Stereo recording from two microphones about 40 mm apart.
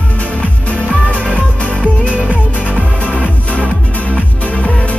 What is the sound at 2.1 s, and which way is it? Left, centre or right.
Music, right.